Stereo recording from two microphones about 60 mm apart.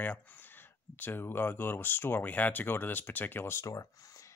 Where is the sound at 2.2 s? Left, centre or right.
Left.